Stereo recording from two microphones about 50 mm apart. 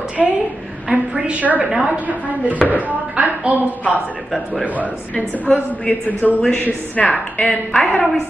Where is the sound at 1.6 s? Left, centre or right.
Centre.